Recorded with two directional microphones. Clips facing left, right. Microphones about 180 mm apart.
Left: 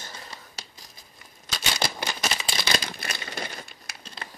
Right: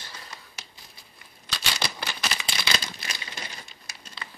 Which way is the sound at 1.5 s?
45° left (ahead or behind).